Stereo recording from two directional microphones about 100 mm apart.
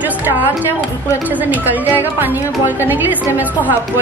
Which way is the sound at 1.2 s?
15° right (ahead or behind).